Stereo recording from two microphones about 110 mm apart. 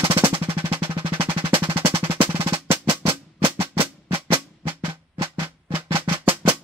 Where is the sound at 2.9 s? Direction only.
55° right (ahead or behind).